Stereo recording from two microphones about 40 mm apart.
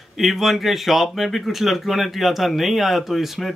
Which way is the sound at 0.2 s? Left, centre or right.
Centre.